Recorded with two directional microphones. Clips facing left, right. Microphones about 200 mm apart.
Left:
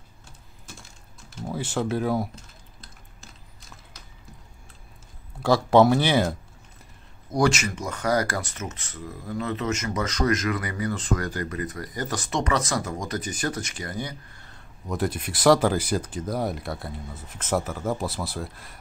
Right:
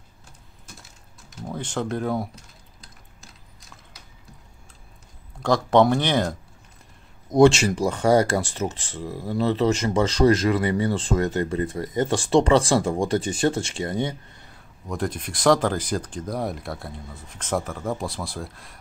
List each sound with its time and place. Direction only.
1.4 s speech: 5° left (ahead or behind)
5.4 s speech: 5° left (ahead or behind)
7.2 s speech: 25° right (ahead or behind)
14.9 s speech: 5° left (ahead or behind)